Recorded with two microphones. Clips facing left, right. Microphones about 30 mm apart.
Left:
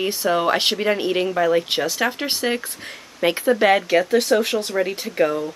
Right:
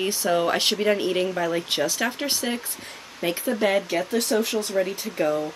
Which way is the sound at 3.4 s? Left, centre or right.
Left.